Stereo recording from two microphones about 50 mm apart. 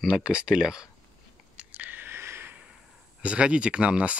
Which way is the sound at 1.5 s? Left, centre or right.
Right.